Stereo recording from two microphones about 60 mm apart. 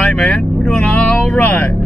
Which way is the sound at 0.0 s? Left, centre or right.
Centre.